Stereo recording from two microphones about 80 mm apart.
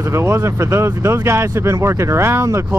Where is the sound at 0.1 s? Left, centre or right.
Right.